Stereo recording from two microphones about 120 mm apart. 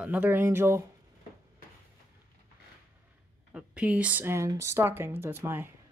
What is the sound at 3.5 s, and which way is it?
Speech, 10° right (ahead or behind).